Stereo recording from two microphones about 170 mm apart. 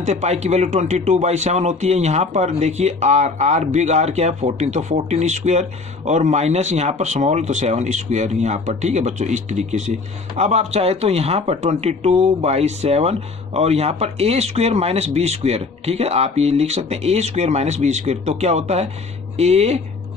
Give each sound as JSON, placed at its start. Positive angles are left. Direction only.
{"t": 0.0, "sound": "speech", "side_deg": -40}